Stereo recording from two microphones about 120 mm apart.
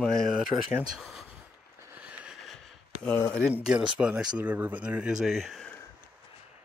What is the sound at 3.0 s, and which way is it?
Speech, 10° left (ahead or behind).